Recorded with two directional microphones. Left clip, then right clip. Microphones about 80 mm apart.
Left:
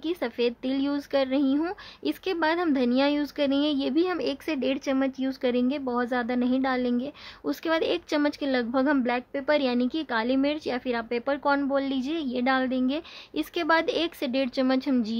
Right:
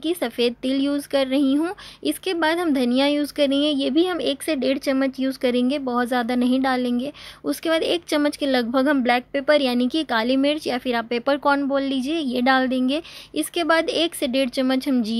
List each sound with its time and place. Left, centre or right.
0.0 s speech: right
1.6 s speech: right
7.4 s speech: right
9.7 s a woman's voice: right
11.7 s speech: right
12.3 s a woman's voice: right
12.8 s speech: right
13.4 s speech: right